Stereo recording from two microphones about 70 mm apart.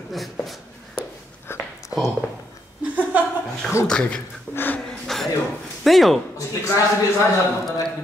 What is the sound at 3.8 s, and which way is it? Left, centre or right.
Speech, centre.